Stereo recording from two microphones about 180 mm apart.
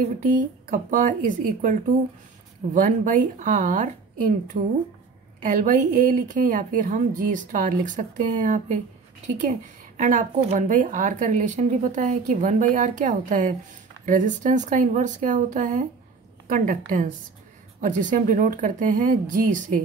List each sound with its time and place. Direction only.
0.2 s speech: 45° right (ahead or behind)
9.9 s speech: 45° right (ahead or behind)